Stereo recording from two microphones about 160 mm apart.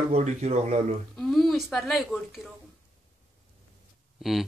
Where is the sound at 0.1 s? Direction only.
45° right (ahead or behind).